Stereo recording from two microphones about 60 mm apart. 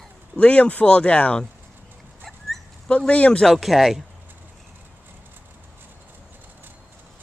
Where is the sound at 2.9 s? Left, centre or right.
Left.